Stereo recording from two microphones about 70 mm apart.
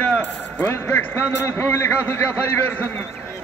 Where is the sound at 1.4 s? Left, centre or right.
Left.